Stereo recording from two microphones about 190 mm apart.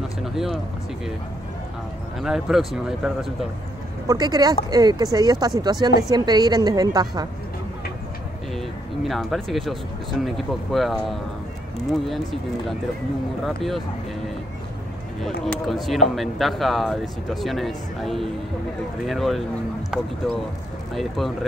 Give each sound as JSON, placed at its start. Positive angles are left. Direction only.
{"t": 0.2, "sound": "speech", "side_deg": 0}
{"t": 2.1, "sound": "speech", "side_deg": 0}
{"t": 4.1, "sound": "a woman's voice", "side_deg": -20}
{"t": 8.5, "sound": "speech", "side_deg": 0}
{"t": 15.2, "sound": "speech", "side_deg": 0}
{"t": 20.9, "sound": "speech", "side_deg": 0}